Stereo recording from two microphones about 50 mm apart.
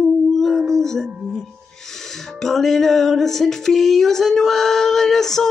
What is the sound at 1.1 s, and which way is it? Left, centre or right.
Music, right.